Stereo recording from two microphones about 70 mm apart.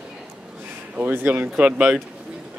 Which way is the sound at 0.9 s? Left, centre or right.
Right.